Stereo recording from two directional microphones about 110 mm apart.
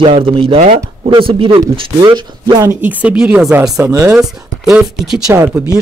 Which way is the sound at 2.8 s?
15° right (ahead or behind).